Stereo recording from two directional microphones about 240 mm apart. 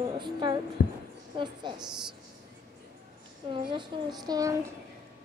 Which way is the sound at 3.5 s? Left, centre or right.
Centre.